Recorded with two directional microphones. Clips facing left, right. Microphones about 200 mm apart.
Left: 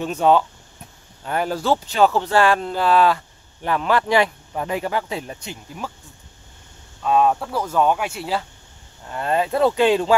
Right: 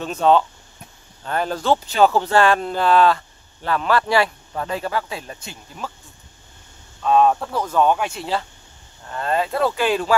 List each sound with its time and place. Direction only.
0.0 s speech: 15° left (ahead or behind)
7.0 s speech: 5° left (ahead or behind)